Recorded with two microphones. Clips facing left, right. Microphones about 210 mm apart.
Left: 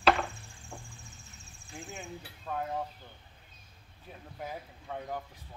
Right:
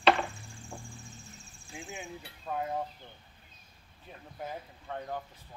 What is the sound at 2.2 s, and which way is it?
Speech, 5° right (ahead or behind).